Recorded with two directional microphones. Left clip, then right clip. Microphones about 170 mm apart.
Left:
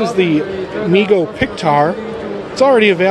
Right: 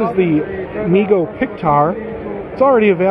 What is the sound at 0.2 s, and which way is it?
Speech, 25° left (ahead or behind).